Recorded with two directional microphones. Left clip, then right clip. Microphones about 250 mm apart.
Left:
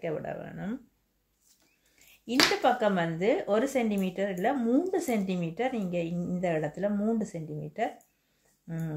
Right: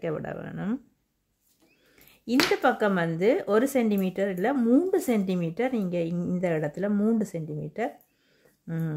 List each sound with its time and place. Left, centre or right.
0.0 s speech: right
2.6 s speech: right